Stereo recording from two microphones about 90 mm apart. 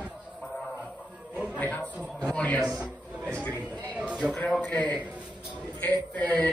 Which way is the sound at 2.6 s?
15° right (ahead or behind).